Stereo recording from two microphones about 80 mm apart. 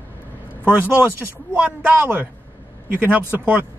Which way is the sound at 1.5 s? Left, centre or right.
Centre.